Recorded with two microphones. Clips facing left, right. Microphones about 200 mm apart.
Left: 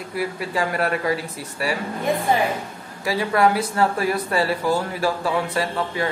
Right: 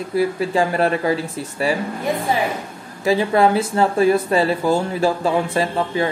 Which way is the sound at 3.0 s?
25° right (ahead or behind).